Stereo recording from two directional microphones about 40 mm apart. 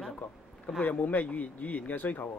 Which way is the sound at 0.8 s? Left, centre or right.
Left.